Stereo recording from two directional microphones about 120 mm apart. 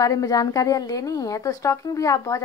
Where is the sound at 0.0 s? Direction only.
30° left (ahead or behind).